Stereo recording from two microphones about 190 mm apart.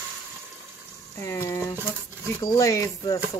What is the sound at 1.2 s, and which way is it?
Speech, 15° left (ahead or behind).